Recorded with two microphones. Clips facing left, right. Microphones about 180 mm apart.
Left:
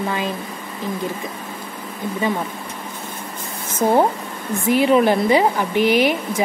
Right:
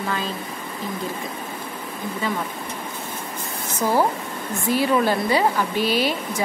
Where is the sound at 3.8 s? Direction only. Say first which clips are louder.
Left 4 dB; 25° left (ahead or behind).